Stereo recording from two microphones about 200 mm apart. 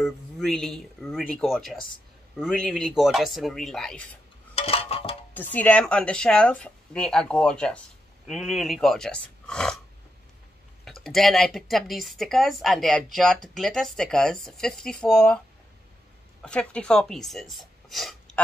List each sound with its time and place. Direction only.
0.0 s speech: centre (ahead or behind)
4.6 s a sound: 30° left (ahead or behind)
5.3 s speech: 10° left (ahead or behind)
10.9 s speech: centre (ahead or behind)
16.4 s speech: 5° left (ahead or behind)